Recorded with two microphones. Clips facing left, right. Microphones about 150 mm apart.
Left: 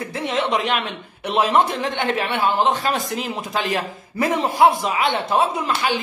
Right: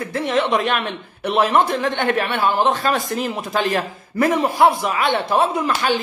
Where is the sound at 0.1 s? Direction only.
20° left (ahead or behind).